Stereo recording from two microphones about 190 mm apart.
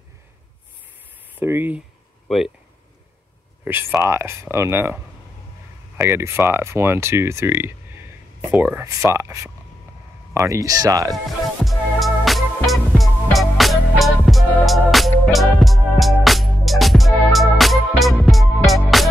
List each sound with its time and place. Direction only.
1.3 s speech: 10° right (ahead or behind)
2.2 s speech: centre (ahead or behind)
3.6 s speech: 10° right (ahead or behind)
11.6 s music: centre (ahead or behind)